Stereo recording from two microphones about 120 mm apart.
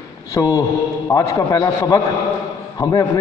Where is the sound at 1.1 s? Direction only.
30° left (ahead or behind).